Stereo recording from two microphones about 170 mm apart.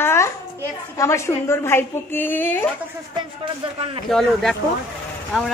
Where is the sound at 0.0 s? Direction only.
15° left (ahead or behind).